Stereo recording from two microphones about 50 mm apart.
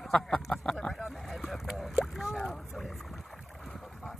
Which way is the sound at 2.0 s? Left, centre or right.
Centre.